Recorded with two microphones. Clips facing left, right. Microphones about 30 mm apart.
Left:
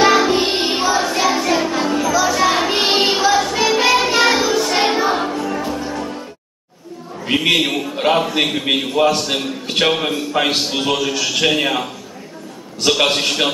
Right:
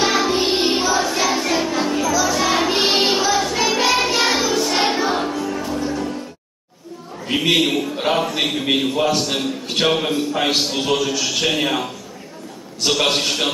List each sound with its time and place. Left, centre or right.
0.0 s music: centre
5.3 s music: left
7.3 s a sound: centre
7.9 s a man's voice: centre
12.9 s a man's voice: centre